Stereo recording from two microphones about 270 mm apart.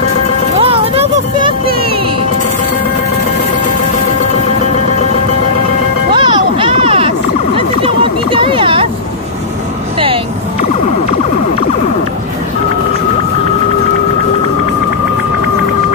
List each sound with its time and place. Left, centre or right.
0.6 s music: right
6.1 s music: centre